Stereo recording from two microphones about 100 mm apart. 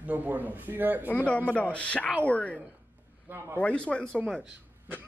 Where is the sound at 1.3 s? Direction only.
15° left (ahead or behind).